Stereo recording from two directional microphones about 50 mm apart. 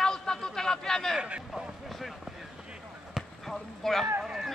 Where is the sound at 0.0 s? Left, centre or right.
Centre.